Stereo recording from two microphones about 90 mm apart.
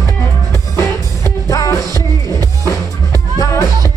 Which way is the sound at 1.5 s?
40° left (ahead or behind).